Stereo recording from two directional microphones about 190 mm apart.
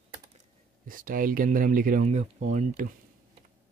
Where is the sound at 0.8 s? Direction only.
45° right (ahead or behind).